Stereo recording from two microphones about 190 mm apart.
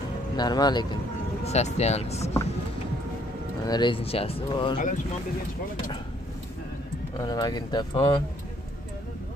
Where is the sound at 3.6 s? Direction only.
25° left (ahead or behind).